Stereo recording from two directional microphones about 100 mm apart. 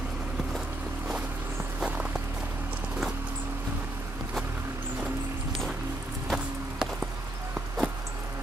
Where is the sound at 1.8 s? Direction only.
15° right (ahead or behind).